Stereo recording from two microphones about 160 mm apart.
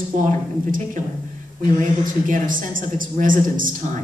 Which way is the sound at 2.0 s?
55° right (ahead or behind).